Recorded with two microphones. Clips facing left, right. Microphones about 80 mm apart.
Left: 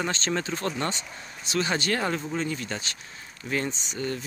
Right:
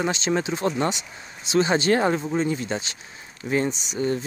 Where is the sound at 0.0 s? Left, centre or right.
Centre.